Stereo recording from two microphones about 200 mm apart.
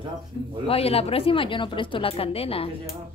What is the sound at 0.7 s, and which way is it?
A woman's voice, 30° left (ahead or behind).